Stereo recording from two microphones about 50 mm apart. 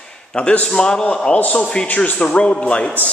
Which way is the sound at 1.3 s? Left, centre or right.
Left.